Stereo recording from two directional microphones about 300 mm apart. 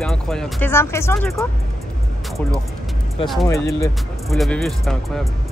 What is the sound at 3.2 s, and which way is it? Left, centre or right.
Speech, centre.